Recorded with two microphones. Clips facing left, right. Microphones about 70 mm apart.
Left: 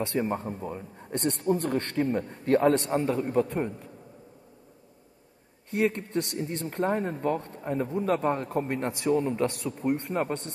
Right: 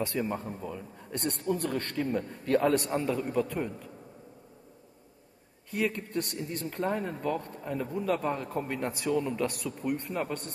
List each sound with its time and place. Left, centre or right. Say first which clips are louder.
0.0 s a man's voice: left 3 dB; left
5.7 s speech: left 4 dB; left
10.0 s speech: left 4 dB; left